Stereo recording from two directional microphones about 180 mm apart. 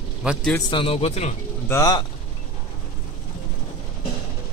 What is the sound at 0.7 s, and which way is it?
Speech, 30° left (ahead or behind).